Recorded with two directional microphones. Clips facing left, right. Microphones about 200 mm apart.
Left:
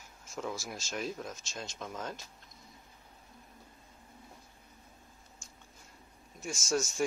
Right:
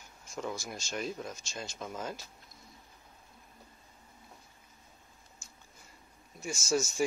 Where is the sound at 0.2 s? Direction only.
Centre (ahead or behind).